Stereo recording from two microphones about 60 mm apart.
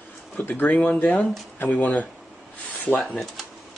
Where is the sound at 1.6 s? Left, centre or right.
Left.